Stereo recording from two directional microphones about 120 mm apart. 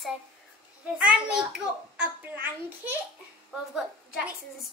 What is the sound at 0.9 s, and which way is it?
A child's voice, 10° right (ahead or behind).